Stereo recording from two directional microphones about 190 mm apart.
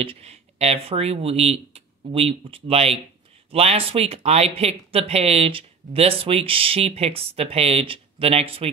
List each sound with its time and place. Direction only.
0.0 s speech: 30° right (ahead or behind)